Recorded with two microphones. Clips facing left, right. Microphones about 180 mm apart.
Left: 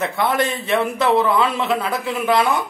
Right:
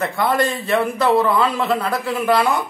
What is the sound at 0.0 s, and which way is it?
A man's voice, centre (ahead or behind).